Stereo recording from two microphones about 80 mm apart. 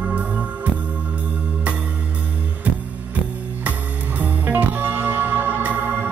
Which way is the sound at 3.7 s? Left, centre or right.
Centre.